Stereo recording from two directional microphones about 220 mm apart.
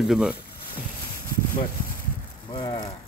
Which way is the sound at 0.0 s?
Centre (ahead or behind).